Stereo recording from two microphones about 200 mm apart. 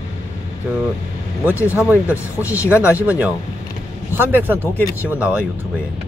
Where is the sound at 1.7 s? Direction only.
5° right (ahead or behind).